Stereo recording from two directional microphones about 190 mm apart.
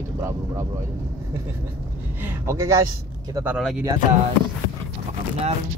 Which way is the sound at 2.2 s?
15° right (ahead or behind).